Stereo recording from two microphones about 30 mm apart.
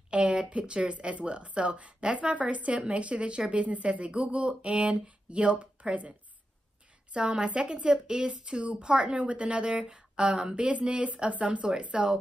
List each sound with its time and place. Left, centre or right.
0.1 s a woman's voice: right
3.5 s speech: right
3.8 s speech: right
4.6 s speech: right
7.2 s speech: right
11.9 s speech: right